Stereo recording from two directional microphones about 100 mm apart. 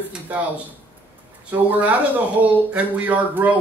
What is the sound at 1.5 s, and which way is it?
A man's voice, 15° right (ahead or behind).